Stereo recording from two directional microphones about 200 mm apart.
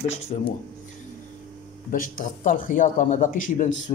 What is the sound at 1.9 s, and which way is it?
Speech, 40° left (ahead or behind).